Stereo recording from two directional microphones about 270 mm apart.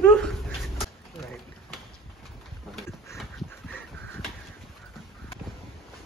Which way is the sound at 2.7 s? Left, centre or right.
Centre.